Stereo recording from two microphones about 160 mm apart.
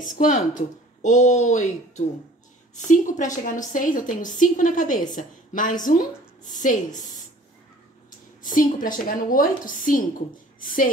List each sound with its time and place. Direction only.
0.0 s a woman's voice: 55° left (ahead or behind)
8.4 s a woman's voice: 55° left (ahead or behind)